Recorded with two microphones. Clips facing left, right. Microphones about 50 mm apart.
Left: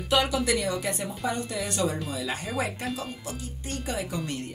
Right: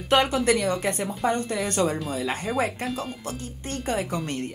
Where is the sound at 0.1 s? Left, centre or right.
Right.